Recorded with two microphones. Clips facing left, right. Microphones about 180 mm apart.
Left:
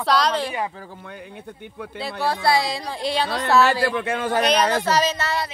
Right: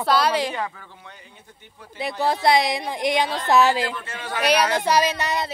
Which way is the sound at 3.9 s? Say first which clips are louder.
Left 9 dB; 55° left (ahead or behind).